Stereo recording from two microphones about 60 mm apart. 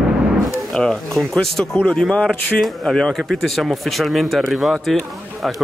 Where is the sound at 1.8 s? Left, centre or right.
Left.